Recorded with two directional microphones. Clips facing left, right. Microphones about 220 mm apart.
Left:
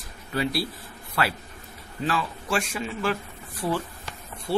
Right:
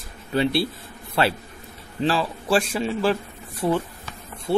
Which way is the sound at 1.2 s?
25° right (ahead or behind).